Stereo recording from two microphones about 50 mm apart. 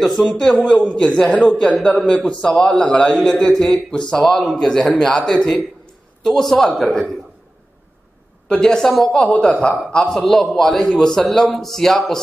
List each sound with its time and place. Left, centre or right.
0.3 s a man's voice: centre
4.2 s speech: centre
4.6 s a man's voice: centre
8.5 s a man's voice: centre
9.1 s a woman's voice: left
10.1 s a man's voice: centre
11.2 s speech: centre